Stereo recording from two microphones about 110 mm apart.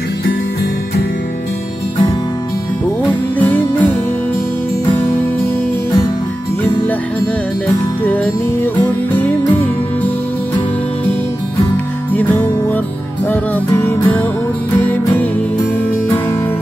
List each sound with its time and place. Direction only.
3.1 s music: 15° left (ahead or behind)
4.9 s music: 20° left (ahead or behind)
8.0 s music: 15° left (ahead or behind)
11.7 s music: 15° left (ahead or behind)